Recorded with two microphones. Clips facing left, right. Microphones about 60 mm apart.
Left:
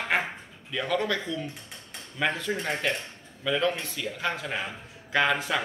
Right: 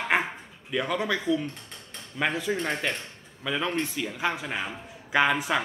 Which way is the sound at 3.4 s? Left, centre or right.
Centre.